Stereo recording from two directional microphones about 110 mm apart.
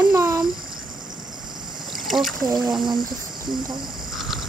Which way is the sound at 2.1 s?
Centre (ahead or behind).